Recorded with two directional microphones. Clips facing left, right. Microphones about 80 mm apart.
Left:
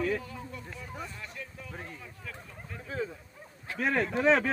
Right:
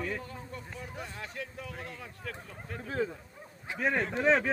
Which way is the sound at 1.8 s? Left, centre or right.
Right.